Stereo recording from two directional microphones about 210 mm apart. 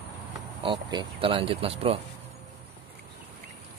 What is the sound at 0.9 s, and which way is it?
Speech, 25° right (ahead or behind).